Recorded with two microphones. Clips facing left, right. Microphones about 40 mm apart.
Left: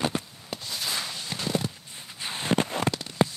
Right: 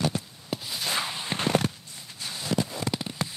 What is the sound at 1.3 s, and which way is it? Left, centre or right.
Walk, right.